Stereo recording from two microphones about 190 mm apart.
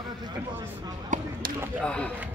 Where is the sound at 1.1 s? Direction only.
40° right (ahead or behind).